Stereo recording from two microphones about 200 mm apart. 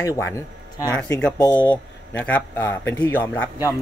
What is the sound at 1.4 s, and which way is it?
A man's voice, 10° left (ahead or behind).